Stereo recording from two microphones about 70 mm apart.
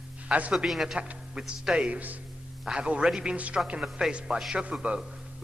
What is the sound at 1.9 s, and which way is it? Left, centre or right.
Speech, right.